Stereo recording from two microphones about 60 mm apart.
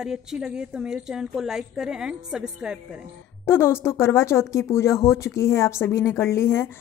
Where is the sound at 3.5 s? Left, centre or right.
Left.